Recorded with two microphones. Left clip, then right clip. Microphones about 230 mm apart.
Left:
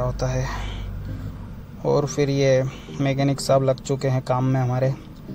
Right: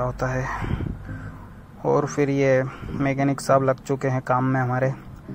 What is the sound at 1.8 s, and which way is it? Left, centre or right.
Speech, centre.